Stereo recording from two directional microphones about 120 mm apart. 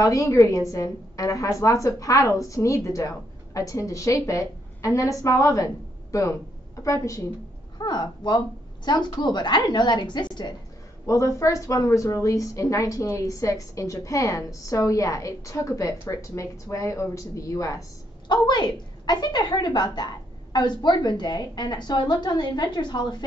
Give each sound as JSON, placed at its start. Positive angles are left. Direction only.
{"t": 0.0, "sound": "a woman's voice", "side_deg": 25}
{"t": 7.8, "sound": "a woman's voice", "side_deg": 35}
{"t": 11.1, "sound": "a woman's voice", "side_deg": 25}
{"t": 18.3, "sound": "a woman's voice", "side_deg": 35}